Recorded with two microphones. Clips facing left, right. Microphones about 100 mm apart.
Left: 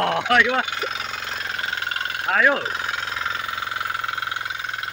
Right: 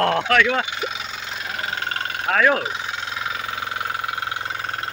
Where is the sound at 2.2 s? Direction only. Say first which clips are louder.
Right 1 dB; 20° left (ahead or behind).